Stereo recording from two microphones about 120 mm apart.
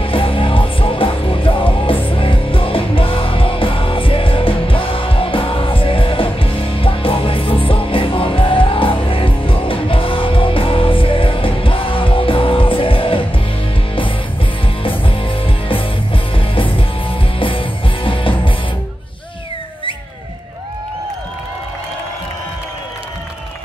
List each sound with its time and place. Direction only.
0.0 s music: 50° left (ahead or behind)
14.8 s music: 45° left (ahead or behind)